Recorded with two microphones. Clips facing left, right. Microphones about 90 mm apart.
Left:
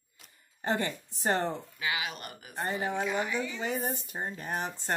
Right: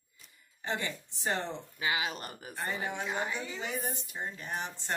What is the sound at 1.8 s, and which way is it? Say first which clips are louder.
Speech: right 4 dB; 30° right (ahead or behind).